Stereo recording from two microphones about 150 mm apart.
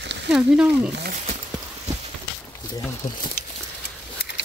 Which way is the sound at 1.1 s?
55° right (ahead or behind).